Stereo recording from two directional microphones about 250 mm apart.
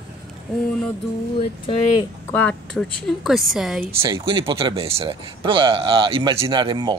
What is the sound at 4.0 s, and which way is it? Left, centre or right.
Speech, centre.